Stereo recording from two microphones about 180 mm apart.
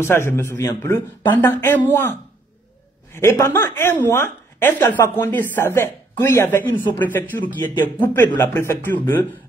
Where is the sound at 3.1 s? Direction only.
15° left (ahead or behind).